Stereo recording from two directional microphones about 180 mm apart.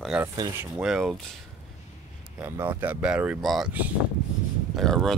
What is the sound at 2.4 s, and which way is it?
Speech, 10° right (ahead or behind).